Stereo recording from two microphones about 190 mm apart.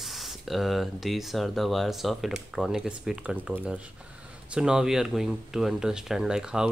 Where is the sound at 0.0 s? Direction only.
Centre (ahead or behind).